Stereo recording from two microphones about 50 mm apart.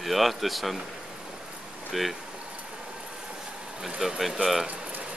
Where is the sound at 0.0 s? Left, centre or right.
Centre.